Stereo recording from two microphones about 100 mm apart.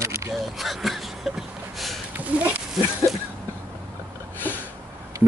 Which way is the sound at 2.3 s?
15° right (ahead or behind).